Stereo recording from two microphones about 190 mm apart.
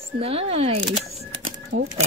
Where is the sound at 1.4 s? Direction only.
70° right (ahead or behind).